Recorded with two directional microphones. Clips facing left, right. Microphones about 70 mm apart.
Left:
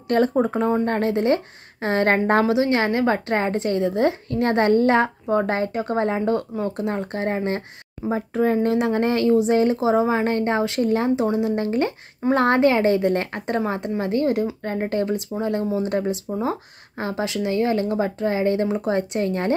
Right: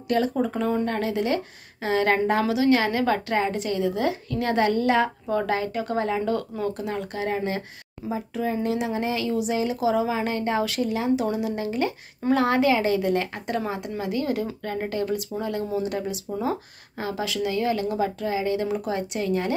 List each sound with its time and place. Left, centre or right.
0.3 s a woman's voice: left
2.4 s a woman's voice: left
6.9 s a woman's voice: left
9.8 s a woman's voice: left
11.1 s speech: left
11.5 s a woman's voice: left